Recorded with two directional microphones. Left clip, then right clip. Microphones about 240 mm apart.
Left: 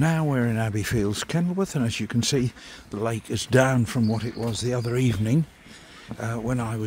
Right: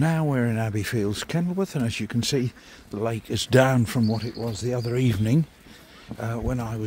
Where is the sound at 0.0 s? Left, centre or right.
Centre.